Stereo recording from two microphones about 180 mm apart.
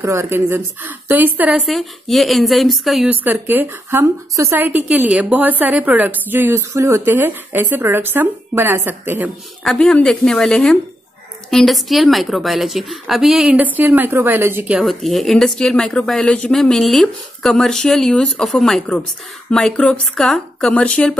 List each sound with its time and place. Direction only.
0.0 s a woman's voice: 15° right (ahead or behind)
9.6 s a woman's voice: 5° left (ahead or behind)